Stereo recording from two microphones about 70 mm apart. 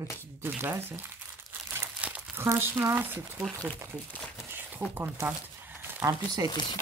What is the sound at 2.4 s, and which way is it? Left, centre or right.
Speech, right.